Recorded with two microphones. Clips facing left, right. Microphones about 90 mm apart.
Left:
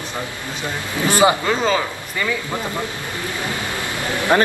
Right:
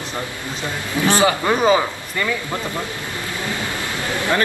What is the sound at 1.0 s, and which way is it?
Speech, 20° right (ahead or behind).